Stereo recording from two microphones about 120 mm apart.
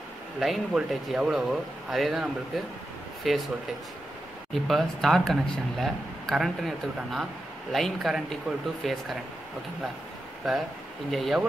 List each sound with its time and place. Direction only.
0.4 s speech: centre (ahead or behind)
4.6 s speech: centre (ahead or behind)
10.4 s speech: centre (ahead or behind)